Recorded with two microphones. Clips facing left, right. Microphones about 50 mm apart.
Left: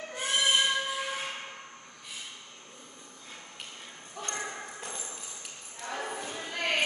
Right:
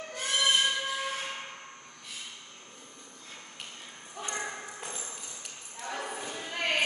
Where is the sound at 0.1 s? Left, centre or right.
Centre.